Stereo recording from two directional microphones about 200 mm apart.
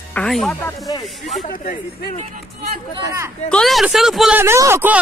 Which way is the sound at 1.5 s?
40° left (ahead or behind).